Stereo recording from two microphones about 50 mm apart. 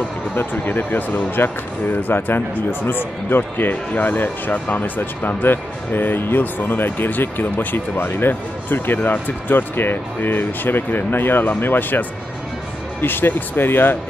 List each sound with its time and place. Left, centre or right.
0.4 s speech: left